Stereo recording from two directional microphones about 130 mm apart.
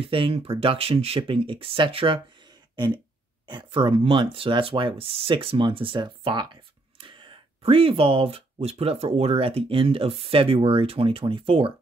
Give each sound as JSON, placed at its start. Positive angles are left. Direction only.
{"t": 0.0, "sound": "speech", "side_deg": -45}
{"t": 3.4, "sound": "speech", "side_deg": -40}